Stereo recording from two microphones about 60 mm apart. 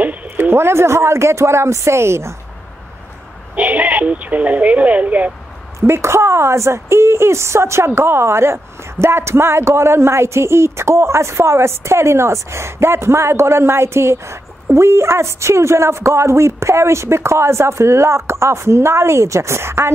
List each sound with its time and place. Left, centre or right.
0.0 s a sound: right
0.4 s speech: right
3.5 s speech: right
5.8 s speech: right